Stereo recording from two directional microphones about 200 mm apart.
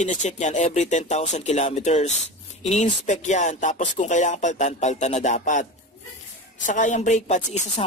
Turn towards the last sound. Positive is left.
turn(degrees=35)  # may be behind; listen again after turning